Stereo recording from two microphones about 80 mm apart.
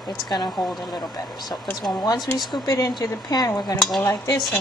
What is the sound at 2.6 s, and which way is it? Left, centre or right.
Dishes, left.